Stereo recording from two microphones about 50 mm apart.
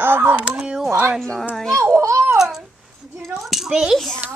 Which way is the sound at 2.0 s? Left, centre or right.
Right.